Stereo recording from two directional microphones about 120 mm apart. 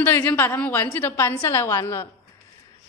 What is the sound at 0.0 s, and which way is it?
A woman's voice, 15° left (ahead or behind).